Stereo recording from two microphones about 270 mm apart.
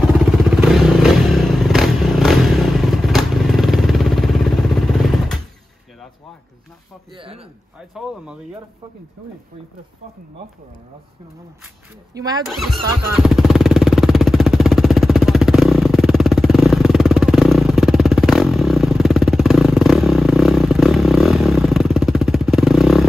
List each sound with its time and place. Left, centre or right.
0.0 s motorcycle: centre
7.2 s a sound: right
12.1 s speech: centre
12.4 s music: centre